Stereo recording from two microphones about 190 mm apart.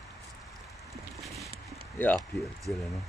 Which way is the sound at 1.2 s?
Centre (ahead or behind).